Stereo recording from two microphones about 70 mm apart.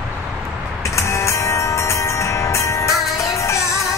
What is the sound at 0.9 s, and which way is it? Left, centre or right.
Music, left.